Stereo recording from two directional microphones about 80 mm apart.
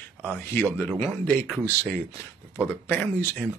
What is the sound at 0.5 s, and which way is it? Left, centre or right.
Speech, left.